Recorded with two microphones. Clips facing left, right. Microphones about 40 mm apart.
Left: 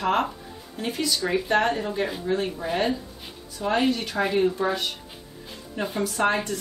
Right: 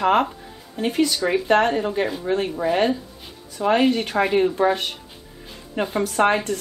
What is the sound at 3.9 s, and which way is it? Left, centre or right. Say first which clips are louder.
Speech: right 5 dB; right.